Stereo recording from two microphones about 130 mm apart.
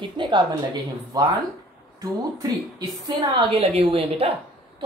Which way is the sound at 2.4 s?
30° right (ahead or behind).